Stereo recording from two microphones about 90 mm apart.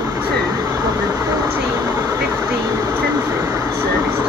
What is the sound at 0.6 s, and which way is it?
Vehicle, 40° right (ahead or behind).